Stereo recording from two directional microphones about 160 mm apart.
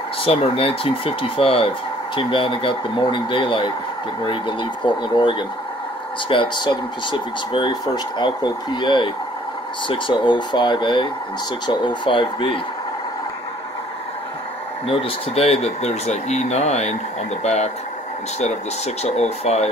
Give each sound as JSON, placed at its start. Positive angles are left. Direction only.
{"t": 0.2, "sound": "speech", "side_deg": 35}
{"t": 14.9, "sound": "speech", "side_deg": 35}
{"t": 19.0, "sound": "speech", "side_deg": 40}